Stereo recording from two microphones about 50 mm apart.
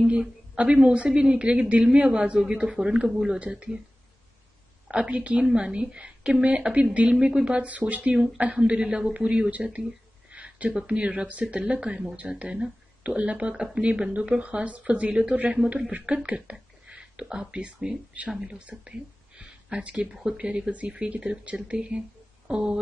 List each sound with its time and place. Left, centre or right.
0.0 s a woman's voice: right
3.3 s a woman's voice: right
4.8 s a woman's voice: centre
9.5 s a woman's voice: right
16.5 s a sound: centre
18.5 s a woman's voice: right